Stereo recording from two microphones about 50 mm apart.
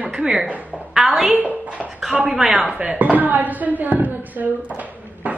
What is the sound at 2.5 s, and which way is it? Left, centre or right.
Speech, right.